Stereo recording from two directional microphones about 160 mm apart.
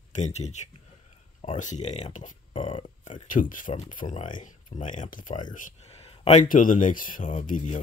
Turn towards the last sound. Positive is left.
turn(degrees=50)  # may be behind; listen again after turning